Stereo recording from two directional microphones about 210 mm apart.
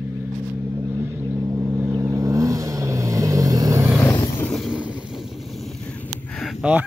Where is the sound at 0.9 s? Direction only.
10° right (ahead or behind).